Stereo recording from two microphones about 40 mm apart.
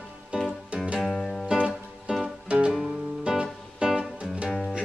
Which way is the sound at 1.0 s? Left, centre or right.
Centre.